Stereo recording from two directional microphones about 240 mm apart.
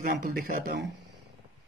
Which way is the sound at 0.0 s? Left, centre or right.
Right.